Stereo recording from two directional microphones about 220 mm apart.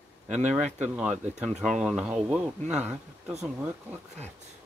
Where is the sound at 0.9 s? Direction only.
5° right (ahead or behind).